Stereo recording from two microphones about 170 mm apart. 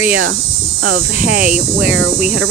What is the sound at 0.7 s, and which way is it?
Speech, 70° right (ahead or behind).